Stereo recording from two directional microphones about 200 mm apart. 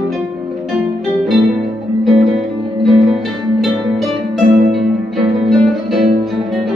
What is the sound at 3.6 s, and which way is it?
Music, centre (ahead or behind).